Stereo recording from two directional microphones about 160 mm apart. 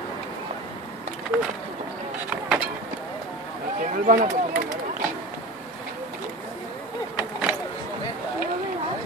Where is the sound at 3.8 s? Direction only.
55° right (ahead or behind).